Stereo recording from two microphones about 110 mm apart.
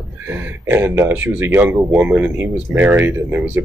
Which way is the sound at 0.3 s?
15° right (ahead or behind).